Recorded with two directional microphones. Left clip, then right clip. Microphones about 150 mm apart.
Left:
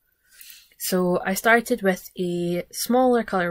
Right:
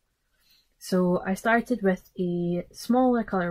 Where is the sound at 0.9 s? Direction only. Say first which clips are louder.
Left 3 dB; 15° left (ahead or behind).